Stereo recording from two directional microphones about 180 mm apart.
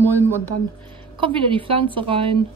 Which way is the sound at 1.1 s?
30° right (ahead or behind).